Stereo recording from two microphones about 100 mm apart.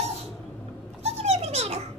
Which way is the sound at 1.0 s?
90° right.